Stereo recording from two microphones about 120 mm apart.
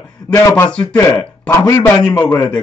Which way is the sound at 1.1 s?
15° left (ahead or behind).